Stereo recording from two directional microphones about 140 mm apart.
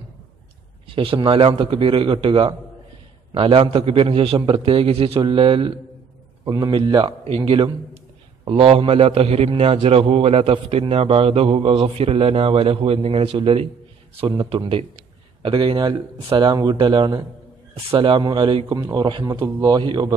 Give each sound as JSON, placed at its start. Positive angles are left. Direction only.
{"t": 1.2, "sound": "a man's voice", "side_deg": -40}
{"t": 18.8, "sound": "a man's voice", "side_deg": -25}
{"t": 19.0, "sound": "a man's voice", "side_deg": -35}